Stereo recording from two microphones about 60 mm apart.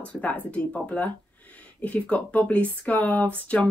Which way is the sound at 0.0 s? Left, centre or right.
Left.